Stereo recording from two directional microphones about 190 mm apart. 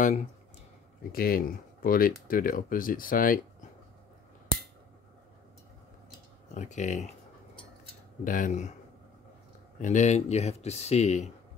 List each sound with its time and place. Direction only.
1.1 s speech: 50° left (ahead or behind)
6.5 s speech: 40° left (ahead or behind)
8.2 s speech: 45° left (ahead or behind)
9.8 s speech: 40° left (ahead or behind)